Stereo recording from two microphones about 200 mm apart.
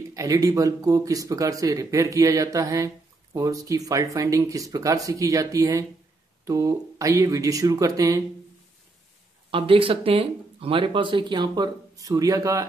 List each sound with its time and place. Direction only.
0.1 s speech: 15° right (ahead or behind)
9.5 s speech: 25° right (ahead or behind)